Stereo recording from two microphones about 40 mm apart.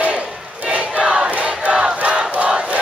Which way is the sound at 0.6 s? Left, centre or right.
Right.